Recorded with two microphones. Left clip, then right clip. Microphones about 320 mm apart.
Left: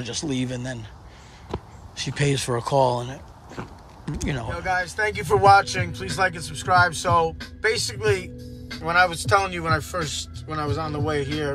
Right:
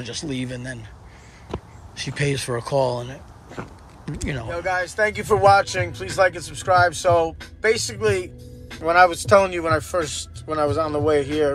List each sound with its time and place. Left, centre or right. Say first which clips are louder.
0.0 s speech: left 1 dB; centre